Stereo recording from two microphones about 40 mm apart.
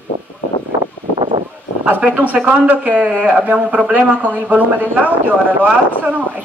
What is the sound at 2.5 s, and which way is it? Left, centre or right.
A man's voice, right.